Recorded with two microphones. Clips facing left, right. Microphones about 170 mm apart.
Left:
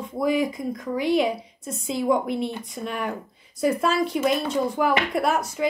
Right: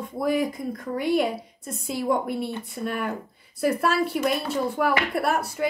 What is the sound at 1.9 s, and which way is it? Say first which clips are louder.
Speech: left 2 dB; centre (ahead or behind).